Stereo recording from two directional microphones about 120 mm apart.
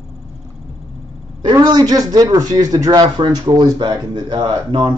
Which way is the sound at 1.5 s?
35° right (ahead or behind).